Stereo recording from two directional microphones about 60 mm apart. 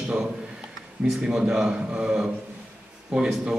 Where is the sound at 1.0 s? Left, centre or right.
Centre.